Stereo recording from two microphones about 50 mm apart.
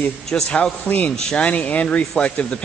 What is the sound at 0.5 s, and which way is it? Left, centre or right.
Speech, left.